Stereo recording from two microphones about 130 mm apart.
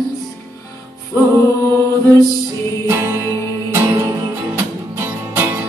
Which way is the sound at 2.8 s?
20° right (ahead or behind).